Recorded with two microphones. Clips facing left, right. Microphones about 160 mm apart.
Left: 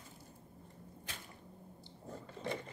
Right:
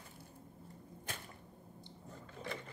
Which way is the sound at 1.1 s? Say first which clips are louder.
Right 4 dB; 50° right (ahead or behind).